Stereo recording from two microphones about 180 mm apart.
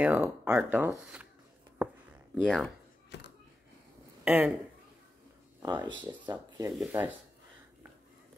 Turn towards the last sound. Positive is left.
turn(degrees=-10)  # may be behind; listen again after turning